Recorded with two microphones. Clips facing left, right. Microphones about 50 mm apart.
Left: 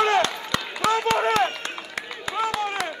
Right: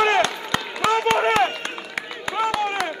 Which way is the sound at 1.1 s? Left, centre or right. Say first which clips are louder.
Right 3 dB; right.